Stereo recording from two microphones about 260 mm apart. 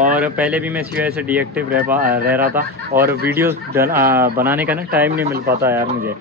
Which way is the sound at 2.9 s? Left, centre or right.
Right.